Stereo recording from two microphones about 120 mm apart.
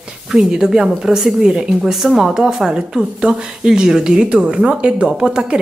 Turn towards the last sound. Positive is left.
turn(degrees=-5)  # may be behind; listen again after turning